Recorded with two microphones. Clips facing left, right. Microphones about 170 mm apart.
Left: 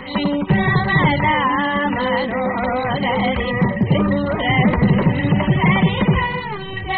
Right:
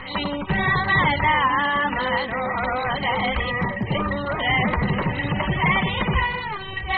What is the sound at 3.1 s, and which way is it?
Music, 35° left (ahead or behind).